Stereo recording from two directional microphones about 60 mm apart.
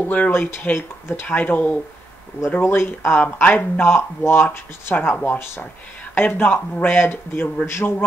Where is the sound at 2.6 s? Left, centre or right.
Left.